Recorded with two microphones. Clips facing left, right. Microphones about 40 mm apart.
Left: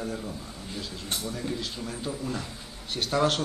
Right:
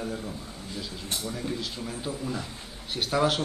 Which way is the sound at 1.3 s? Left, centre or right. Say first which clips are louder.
Even; centre.